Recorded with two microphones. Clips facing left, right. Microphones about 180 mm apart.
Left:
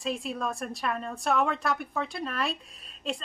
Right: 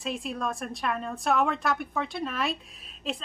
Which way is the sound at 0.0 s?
Centre (ahead or behind).